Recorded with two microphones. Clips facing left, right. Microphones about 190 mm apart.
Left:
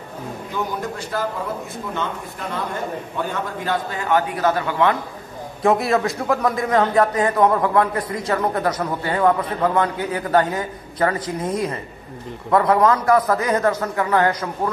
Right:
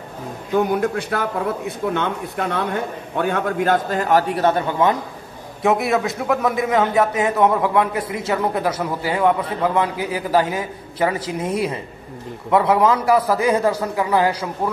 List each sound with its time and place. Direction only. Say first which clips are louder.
0.7 s a man's voice: right 7 dB; 60° right (ahead or behind)
3.6 s a man's voice: right 4 dB; 45° right (ahead or behind)
4.4 s a man's voice: right 1 dB; 25° right (ahead or behind)
5.6 s a man's voice: even; centre (ahead or behind)